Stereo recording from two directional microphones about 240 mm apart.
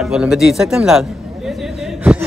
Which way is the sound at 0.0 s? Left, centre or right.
Centre.